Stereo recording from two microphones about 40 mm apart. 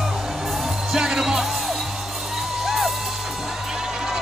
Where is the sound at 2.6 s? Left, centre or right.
Centre.